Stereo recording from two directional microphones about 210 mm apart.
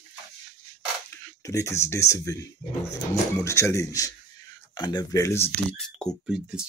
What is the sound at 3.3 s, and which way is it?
Speech, 15° left (ahead or behind).